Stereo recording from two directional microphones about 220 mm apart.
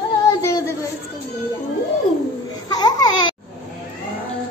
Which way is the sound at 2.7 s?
20° left (ahead or behind).